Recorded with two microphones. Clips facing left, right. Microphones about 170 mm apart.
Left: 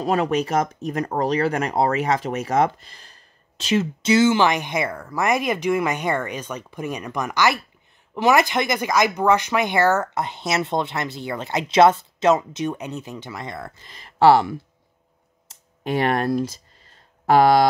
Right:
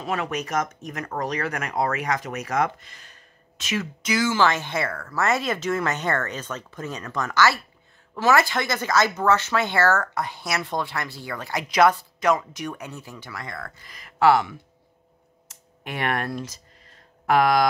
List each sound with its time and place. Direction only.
0.0 s speech: 35° left (ahead or behind)
15.4 s a sound: 30° left (ahead or behind)
17.3 s speech: 30° left (ahead or behind)